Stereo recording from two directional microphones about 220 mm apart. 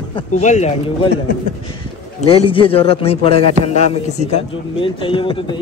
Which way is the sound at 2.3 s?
25° left (ahead or behind).